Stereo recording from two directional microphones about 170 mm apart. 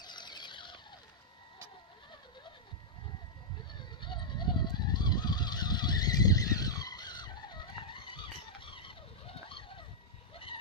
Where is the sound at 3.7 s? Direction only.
25° left (ahead or behind).